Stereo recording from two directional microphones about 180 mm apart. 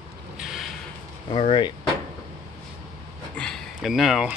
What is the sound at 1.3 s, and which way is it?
Speech, 30° left (ahead or behind).